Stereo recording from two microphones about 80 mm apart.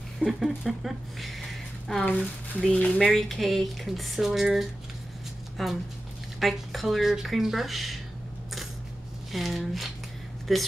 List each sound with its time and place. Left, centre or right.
0.2 s speech: centre
2.6 s speech: centre
3.0 s speech: centre
9.3 s speech: centre